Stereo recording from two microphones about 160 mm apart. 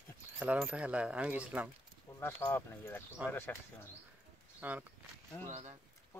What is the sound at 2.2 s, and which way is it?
Speech, 15° left (ahead or behind).